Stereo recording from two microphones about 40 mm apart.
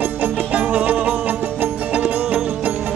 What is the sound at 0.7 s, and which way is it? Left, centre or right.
Music, right.